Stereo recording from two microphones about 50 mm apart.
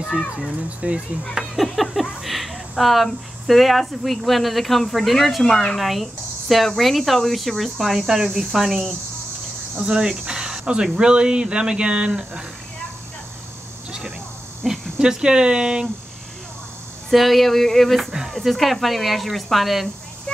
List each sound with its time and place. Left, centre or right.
0.1 s speech: centre
0.7 s speech: right
1.5 s a sound: centre
3.4 s speech: centre
9.8 s speech: centre
14.6 s speech: centre
17.1 s speech: centre